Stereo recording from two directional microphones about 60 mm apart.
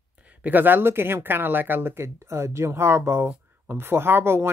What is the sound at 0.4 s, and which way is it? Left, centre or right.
Speech, right.